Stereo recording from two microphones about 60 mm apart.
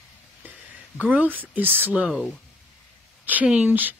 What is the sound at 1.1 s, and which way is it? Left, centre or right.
Speech, right.